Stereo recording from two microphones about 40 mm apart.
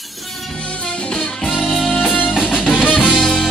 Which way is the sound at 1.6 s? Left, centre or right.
Centre.